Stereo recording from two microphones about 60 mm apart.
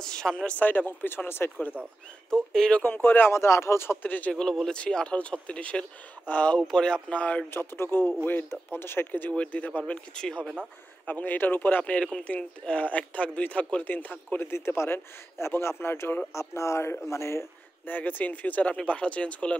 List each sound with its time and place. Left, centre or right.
0.0 s speech: centre
0.7 s a man's voice: left
2.3 s speech: centre
2.8 s a man's voice: left
3.4 s speech: left
4.0 s speech: left
4.3 s speech: centre
7.5 s a man's voice: left
10.1 s speech: centre
11.1 s speech: left
11.8 s speech: centre
13.8 s a man's voice: left
16.3 s speech: left
17.8 s speech: left